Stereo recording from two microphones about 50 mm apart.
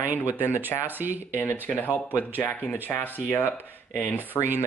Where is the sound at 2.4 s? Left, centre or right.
Left.